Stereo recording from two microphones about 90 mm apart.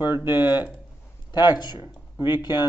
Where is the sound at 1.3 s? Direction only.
55° left (ahead or behind).